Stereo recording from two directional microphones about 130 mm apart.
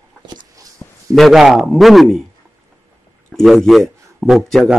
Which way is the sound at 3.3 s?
5° left (ahead or behind).